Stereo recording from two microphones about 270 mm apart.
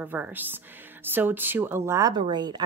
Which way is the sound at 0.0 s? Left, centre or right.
Centre.